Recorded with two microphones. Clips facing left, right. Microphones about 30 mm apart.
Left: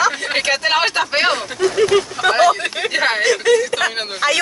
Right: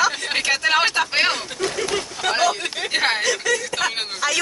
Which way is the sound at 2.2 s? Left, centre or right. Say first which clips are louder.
Left 5 dB; left.